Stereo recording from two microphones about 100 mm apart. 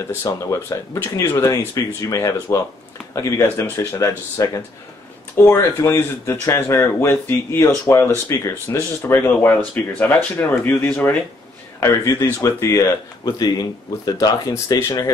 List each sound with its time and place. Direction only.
0.2 s speech: 30° left (ahead or behind)
11.8 s speech: 35° left (ahead or behind)
13.2 s speech: 40° left (ahead or behind)
14.5 s speech: 30° left (ahead or behind)